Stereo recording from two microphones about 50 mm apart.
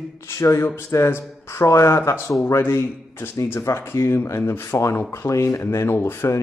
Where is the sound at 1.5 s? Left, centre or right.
Left.